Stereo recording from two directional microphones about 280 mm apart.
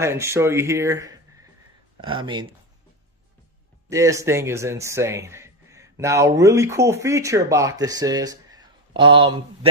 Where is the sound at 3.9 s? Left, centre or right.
Centre.